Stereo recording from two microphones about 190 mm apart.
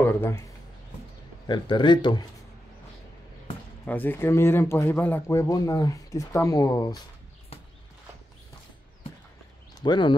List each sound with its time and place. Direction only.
0.0 s a sound: 15° left (ahead or behind)
1.5 s speech: 25° left (ahead or behind)
3.8 s speech: 10° left (ahead or behind)
9.8 s speech: 25° left (ahead or behind)